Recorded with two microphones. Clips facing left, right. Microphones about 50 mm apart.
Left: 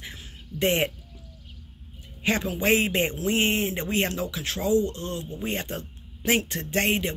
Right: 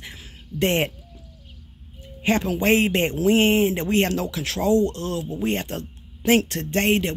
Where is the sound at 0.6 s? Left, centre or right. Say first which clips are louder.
Right 2 dB; right.